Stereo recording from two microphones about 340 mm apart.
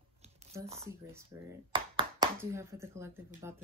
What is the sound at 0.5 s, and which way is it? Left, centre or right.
Speech, centre.